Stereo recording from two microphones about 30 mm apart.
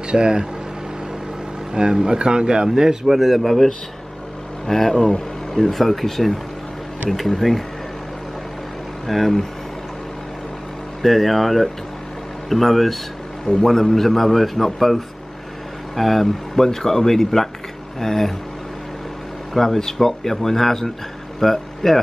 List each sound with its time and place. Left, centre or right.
0.1 s speech: right
1.7 s speech: right
3.1 s a man's voice: centre
4.6 s a man's voice: centre
9.0 s a man's voice: centre
11.0 s a man's voice: centre
19.5 s speech: centre